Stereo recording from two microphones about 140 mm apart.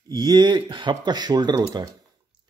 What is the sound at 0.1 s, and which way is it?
Speech, 30° right (ahead or behind).